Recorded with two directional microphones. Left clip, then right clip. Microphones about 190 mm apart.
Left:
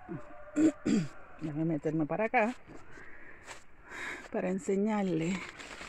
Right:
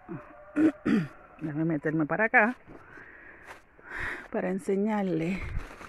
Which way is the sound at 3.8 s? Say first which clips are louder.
Right 6 dB; 15° right (ahead or behind).